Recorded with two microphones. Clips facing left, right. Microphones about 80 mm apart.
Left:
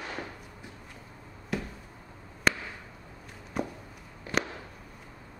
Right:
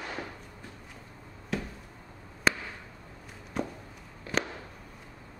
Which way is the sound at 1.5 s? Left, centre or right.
Centre.